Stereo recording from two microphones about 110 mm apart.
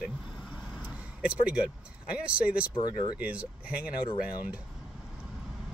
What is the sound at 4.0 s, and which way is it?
Speech, 45° left (ahead or behind).